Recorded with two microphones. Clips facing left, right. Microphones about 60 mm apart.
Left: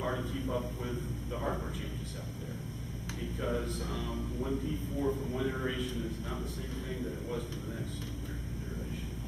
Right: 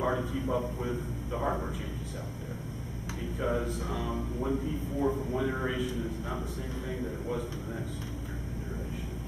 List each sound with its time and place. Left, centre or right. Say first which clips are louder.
0.0 s a man's voice: right 5 dB; centre
3.3 s a man's voice: right 4 dB; centre